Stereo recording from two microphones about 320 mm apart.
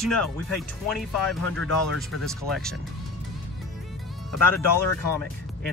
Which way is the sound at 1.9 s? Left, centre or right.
Centre.